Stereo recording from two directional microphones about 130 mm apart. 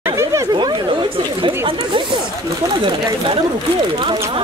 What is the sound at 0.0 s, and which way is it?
Chatter, 20° right (ahead or behind).